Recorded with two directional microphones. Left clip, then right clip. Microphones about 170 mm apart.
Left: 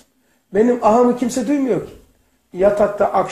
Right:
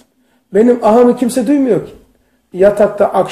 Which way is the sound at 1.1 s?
25° right (ahead or behind).